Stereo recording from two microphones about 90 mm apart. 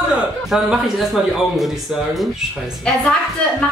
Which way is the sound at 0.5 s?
5° right (ahead or behind).